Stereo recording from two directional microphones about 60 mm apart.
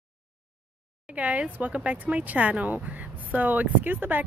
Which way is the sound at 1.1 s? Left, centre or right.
Right.